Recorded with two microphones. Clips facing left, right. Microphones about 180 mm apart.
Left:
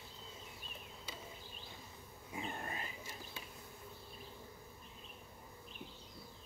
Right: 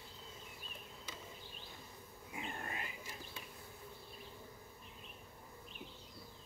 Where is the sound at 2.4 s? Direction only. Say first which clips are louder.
Left 1 dB; 35° left (ahead or behind).